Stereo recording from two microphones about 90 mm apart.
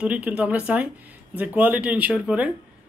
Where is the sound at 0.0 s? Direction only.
15° right (ahead or behind).